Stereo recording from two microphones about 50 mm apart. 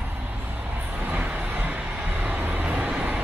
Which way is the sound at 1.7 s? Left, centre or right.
Right.